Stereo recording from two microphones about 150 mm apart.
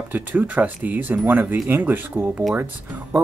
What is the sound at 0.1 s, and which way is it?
Speech, 10° right (ahead or behind).